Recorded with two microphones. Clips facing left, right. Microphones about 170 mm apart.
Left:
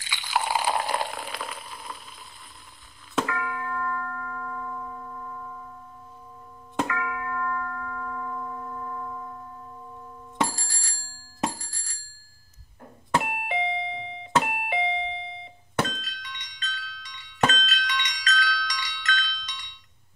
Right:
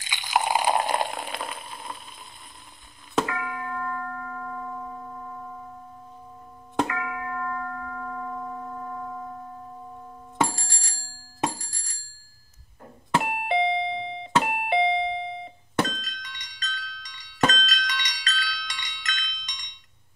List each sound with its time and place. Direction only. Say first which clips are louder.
0.0 s water: right 2 dB; 15° right (ahead or behind)
3.3 s clang: left 1 dB; 20° right (ahead or behind)
6.9 s a sound: left 1 dB; 25° right (ahead or behind)
10.5 s bicycle bell: right 1 dB; 20° right (ahead or behind)
11.7 s telephone bell ringing: even; 15° right (ahead or behind)
13.3 s doorbell: right 5 dB; 30° right (ahead or behind)
16.0 s wind chime: left 1 dB; 40° right (ahead or behind); by 19.8 s 20° right (ahead or behind)